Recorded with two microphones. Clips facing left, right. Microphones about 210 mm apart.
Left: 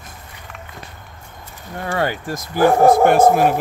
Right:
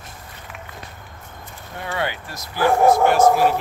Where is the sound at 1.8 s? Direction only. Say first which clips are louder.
Left 5 dB; 45° left (ahead or behind).